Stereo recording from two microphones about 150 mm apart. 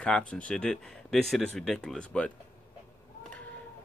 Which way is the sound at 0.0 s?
10° left (ahead or behind).